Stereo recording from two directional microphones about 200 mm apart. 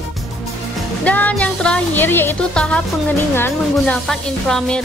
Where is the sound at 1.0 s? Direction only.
5° left (ahead or behind).